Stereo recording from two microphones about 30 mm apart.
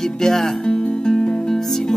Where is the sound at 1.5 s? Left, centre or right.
Centre.